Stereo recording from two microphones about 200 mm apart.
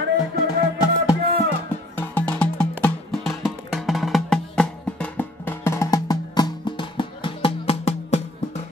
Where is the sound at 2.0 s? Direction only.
5° left (ahead or behind); by 8.2 s 30° left (ahead or behind).